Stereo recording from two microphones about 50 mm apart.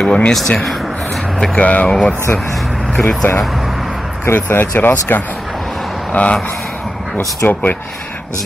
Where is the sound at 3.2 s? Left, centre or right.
Left.